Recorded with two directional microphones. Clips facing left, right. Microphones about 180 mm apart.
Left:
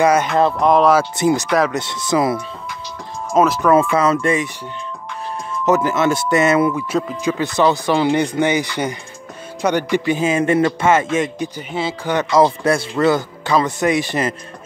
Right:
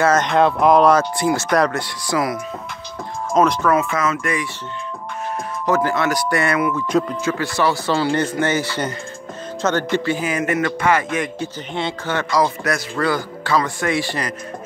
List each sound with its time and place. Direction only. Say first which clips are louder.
0.0 s speech: left 1 dB; 10° left (ahead or behind)
1.1 s a man's voice: left 2 dB; 20° left (ahead or behind)
3.7 s a man's voice: left 5 dB; 30° left (ahead or behind)
5.7 s a man's voice: left 3 dB; 20° left (ahead or behind)
6.9 s speech: right 2 dB; 5° left (ahead or behind)
7.2 s a man's voice: left 3 dB; 20° left (ahead or behind)
11.7 s speech: left 1 dB; 5° left (ahead or behind)
12.1 s a man's voice: left 5 dB; 20° left (ahead or behind)